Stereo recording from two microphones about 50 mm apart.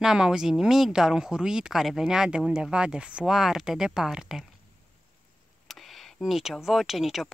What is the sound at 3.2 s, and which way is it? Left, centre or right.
Speech, centre.